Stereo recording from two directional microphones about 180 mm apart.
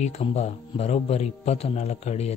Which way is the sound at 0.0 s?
35° left (ahead or behind).